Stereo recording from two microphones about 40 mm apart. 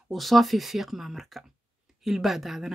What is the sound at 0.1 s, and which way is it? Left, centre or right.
Speech, centre.